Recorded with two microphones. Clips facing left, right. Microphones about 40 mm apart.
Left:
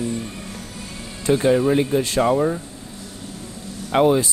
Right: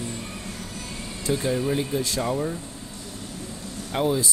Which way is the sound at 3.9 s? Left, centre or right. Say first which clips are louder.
Left 8 dB; left.